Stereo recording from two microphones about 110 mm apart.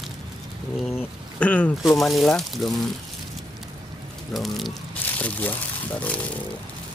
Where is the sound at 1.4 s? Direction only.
10° left (ahead or behind).